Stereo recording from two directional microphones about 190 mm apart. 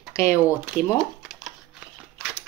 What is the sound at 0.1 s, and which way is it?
Typing, 15° left (ahead or behind).